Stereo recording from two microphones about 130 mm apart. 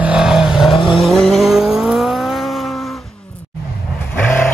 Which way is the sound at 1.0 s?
Centre (ahead or behind).